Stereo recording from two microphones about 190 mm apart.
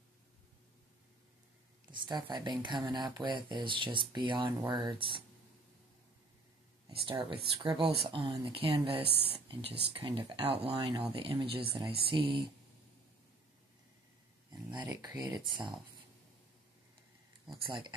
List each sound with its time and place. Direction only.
1.9 s speech: 25° right (ahead or behind)
6.9 s speech: 30° right (ahead or behind)
9.0 s speech: 30° left (ahead or behind)
9.5 s speech: 30° right (ahead or behind)
14.5 s a sound: 25° right (ahead or behind)
14.9 s speech: 20° right (ahead or behind)
17.5 s speech: 25° right (ahead or behind)